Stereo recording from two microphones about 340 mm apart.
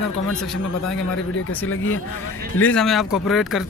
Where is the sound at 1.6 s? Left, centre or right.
Left.